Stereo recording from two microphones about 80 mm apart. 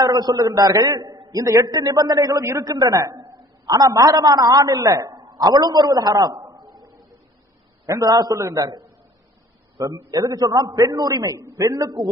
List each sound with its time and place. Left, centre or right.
0.0 s a man's voice: right
3.2 s a sound: right
3.9 s a man's voice: right
5.3 s a man's voice: right
6.5 s a sound: right
8.0 s a man's voice: right